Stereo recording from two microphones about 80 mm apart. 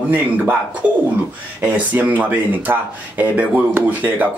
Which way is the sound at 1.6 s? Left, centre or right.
Right.